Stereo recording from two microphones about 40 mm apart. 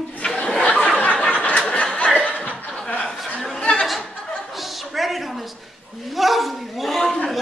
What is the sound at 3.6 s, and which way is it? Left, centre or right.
Music, left.